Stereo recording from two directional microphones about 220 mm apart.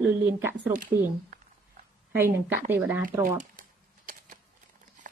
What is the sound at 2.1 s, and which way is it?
Speech, 10° right (ahead or behind).